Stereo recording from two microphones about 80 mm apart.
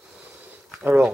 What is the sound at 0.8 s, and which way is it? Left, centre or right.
Speech, centre.